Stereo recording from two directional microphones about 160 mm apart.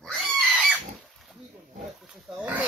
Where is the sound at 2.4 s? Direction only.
10° right (ahead or behind).